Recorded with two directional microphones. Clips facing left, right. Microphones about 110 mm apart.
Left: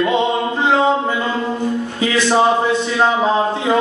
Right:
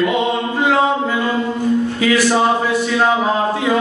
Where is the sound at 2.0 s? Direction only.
25° left (ahead or behind).